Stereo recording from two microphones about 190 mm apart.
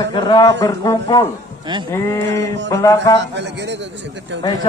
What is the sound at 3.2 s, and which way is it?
A man's voice, 65° right (ahead or behind).